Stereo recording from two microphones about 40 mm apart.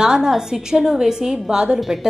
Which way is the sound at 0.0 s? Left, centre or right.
Centre.